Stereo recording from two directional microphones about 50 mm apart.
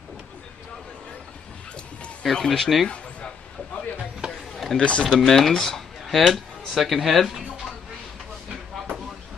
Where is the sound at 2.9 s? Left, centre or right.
Left.